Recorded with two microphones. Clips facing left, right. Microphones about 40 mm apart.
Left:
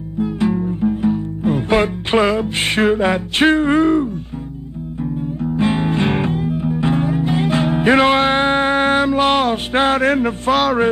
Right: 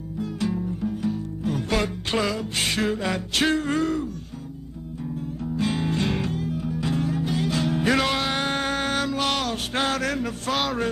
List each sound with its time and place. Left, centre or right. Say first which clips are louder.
0.2 s music: left 9 dB; left
5.4 s music: left 8 dB; left
10.5 s speech: left 10 dB; centre